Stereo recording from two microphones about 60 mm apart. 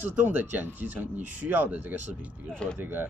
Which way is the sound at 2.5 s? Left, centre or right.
Centre.